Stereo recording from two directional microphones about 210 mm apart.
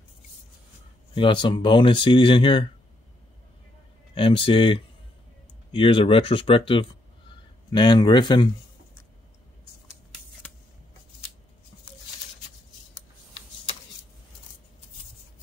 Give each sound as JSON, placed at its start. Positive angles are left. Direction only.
{"t": 1.1, "sound": "speech", "side_deg": 25}
{"t": 4.1, "sound": "speech", "side_deg": 25}